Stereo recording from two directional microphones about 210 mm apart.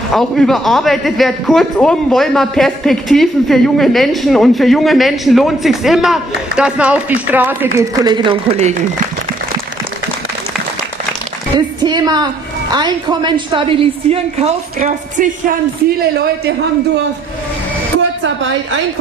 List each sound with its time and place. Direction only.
0.1 s a man's voice: centre (ahead or behind); by 8.7 s 30° right (ahead or behind)
11.5 s a woman's voice: 20° right (ahead or behind)